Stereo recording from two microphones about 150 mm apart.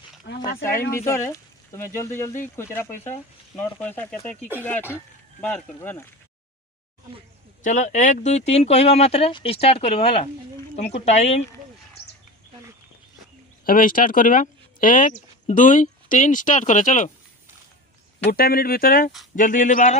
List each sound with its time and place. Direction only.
0.5 s speech: 80° left
0.9 s speech: 20° left (ahead or behind)
7.6 s speech: 55° left (ahead or behind)
13.7 s speech: 70° left (ahead or behind)
18.3 s speech: 90° left; by 19.1 s 75° left (ahead or behind)
19.3 s speech: 60° left (ahead or behind)